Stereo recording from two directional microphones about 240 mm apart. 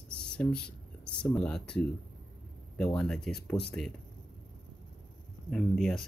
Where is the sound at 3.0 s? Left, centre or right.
Centre.